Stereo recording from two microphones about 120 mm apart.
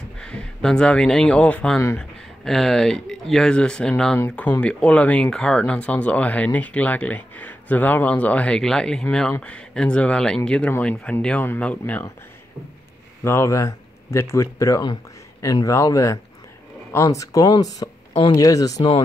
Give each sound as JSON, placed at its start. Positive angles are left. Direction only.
{"t": 0.2, "sound": "speech", "side_deg": 5}
{"t": 13.2, "sound": "a man's voice", "side_deg": 20}